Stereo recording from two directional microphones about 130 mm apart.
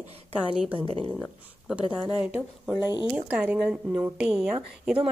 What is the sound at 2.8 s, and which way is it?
Speech, 35° left (ahead or behind).